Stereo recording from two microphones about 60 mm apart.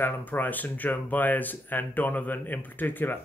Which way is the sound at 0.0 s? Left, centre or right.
Left.